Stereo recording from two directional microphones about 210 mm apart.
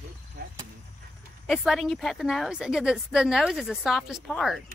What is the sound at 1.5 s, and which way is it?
A woman's voice, centre (ahead or behind).